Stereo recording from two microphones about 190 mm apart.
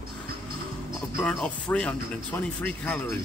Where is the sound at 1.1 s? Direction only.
5° left (ahead or behind).